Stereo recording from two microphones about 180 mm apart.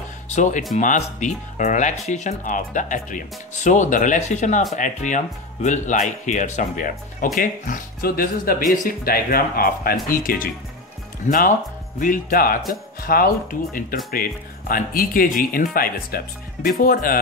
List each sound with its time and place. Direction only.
0.3 s speech: 45° left (ahead or behind)